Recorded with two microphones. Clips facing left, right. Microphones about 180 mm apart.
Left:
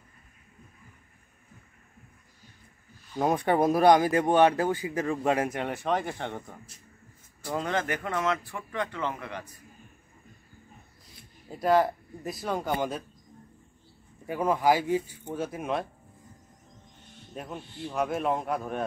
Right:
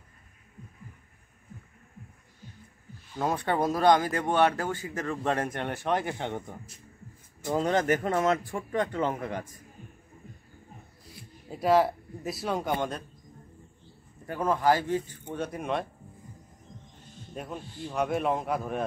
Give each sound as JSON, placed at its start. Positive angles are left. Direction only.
{"t": 3.2, "sound": "speech", "side_deg": 20}
{"t": 7.5, "sound": "a man's voice", "side_deg": -35}
{"t": 11.4, "sound": "speech", "side_deg": -5}
{"t": 14.2, "sound": "speech", "side_deg": 10}
{"t": 17.3, "sound": "speech", "side_deg": 0}